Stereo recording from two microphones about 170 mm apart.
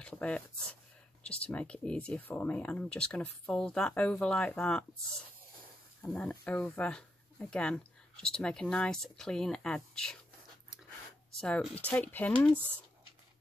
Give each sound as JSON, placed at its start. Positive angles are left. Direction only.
{"t": 0.0, "sound": "speech", "side_deg": 5}
{"t": 6.0, "sound": "speech", "side_deg": 5}
{"t": 11.3, "sound": "speech", "side_deg": 5}